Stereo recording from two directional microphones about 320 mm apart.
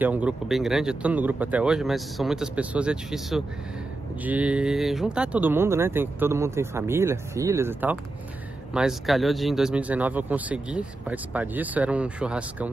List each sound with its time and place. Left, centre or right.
0.0 s speech: centre